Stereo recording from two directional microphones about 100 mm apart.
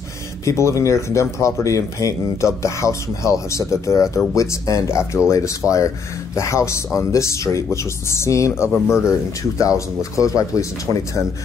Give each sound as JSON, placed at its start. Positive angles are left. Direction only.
{"t": 0.5, "sound": "speech", "side_deg": 30}